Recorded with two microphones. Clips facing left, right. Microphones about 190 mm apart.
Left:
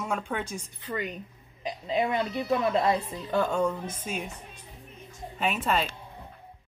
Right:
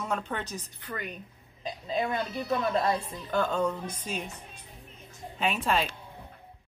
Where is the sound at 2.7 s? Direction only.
20° left (ahead or behind).